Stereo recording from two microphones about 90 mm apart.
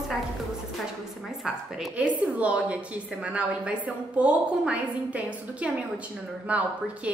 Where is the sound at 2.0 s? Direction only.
15° right (ahead or behind).